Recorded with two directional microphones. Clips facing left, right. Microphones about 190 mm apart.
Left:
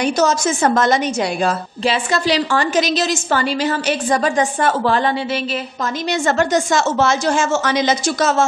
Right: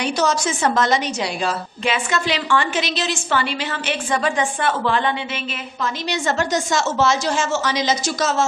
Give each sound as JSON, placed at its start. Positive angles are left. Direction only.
{"t": 0.0, "sound": "a woman's voice", "side_deg": 45}
{"t": 1.9, "sound": "a woman's voice", "side_deg": 35}
{"t": 6.0, "sound": "a woman's voice", "side_deg": 50}